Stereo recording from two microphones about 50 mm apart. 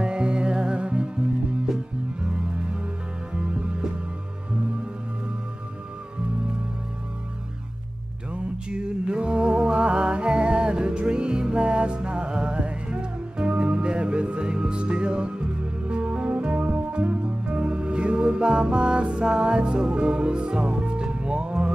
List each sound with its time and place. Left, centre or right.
0.0 s music: centre
2.2 s music: centre
8.3 s music: right